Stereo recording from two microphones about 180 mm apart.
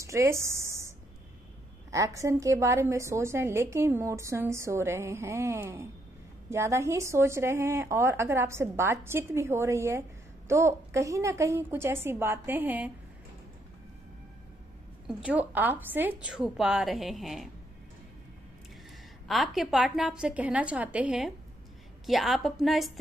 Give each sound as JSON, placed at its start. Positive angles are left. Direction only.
{"t": 0.0, "sound": "a sound", "side_deg": -15}
{"t": 1.9, "sound": "a woman's voice", "side_deg": -15}
{"t": 15.0, "sound": "a woman's voice", "side_deg": -5}
{"t": 19.2, "sound": "a woman's voice", "side_deg": 0}